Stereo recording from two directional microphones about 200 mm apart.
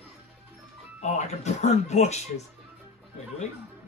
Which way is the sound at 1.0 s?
35° left (ahead or behind).